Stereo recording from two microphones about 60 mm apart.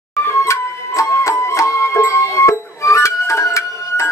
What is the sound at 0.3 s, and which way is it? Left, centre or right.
Music, left.